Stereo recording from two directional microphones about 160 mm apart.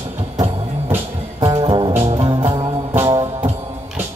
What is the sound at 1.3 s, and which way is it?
Music, 25° right (ahead or behind).